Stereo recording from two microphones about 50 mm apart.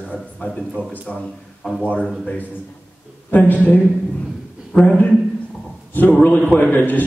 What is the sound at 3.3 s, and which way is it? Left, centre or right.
Speech, left.